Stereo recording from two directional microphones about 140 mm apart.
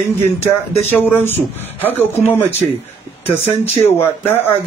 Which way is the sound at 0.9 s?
15° left (ahead or behind).